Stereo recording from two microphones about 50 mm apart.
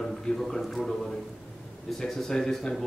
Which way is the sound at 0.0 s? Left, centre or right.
Centre.